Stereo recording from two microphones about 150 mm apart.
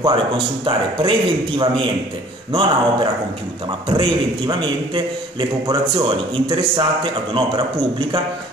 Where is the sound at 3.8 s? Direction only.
35° right (ahead or behind).